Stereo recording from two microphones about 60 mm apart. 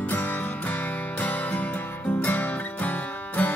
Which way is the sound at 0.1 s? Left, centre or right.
Left.